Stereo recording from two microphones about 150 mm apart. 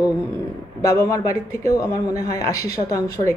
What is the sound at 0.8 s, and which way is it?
Speech, 25° left (ahead or behind).